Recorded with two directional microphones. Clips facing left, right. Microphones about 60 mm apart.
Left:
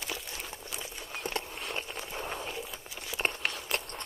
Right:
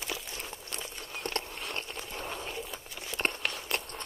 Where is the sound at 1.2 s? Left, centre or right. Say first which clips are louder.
Even; centre.